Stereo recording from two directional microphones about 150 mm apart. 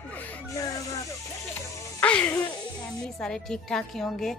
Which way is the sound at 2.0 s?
10° left (ahead or behind).